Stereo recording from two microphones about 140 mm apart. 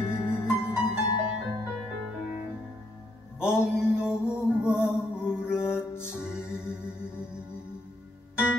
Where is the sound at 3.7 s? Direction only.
5° right (ahead or behind).